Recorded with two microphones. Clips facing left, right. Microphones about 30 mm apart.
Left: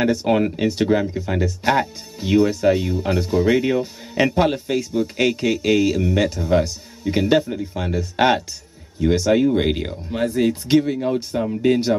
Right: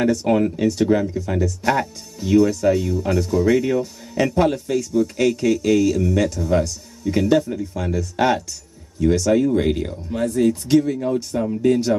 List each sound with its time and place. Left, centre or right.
0.0 s speech: left